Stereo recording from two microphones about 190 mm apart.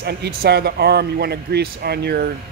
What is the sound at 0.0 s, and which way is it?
A man's voice, 60° right (ahead or behind).